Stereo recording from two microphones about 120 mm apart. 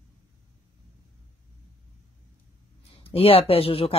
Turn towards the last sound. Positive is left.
turn(degrees=50)  # may be behind; listen again after turning